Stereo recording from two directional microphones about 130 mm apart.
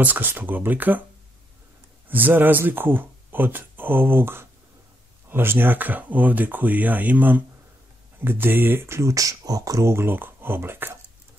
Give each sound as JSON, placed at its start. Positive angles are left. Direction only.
{"t": 0.0, "sound": "speech", "side_deg": -15}
{"t": 2.0, "sound": "speech", "side_deg": -15}